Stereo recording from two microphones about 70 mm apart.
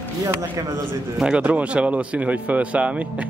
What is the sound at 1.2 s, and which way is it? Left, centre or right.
Speech, centre.